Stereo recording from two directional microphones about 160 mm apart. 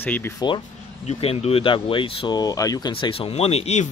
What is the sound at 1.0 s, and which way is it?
Speech, 40° left (ahead or behind).